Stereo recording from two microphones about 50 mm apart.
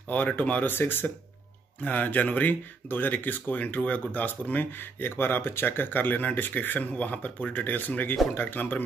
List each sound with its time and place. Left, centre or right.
0.3 s speech: left
0.7 s speech: left
1.8 s speech: left